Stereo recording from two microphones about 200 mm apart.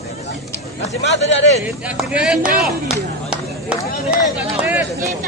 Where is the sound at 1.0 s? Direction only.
60° left (ahead or behind).